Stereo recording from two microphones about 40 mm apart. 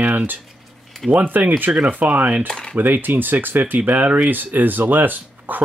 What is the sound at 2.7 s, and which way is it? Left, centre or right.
Speech, right.